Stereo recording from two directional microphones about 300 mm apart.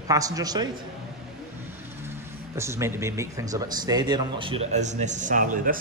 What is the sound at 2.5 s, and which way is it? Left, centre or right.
A man's voice, centre.